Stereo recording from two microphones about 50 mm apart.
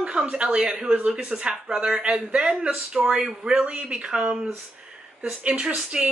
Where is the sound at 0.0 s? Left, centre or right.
Centre.